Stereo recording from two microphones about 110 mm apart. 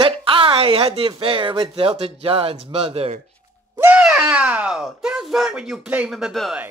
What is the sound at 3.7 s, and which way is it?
Speech, 15° right (ahead or behind).